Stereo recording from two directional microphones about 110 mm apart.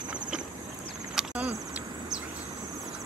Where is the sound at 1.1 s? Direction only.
10° right (ahead or behind).